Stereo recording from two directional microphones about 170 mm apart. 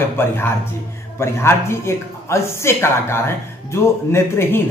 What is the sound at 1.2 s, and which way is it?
Speech, 15° left (ahead or behind).